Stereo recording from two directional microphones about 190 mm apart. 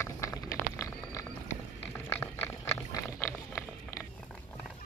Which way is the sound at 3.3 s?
5° left (ahead or behind).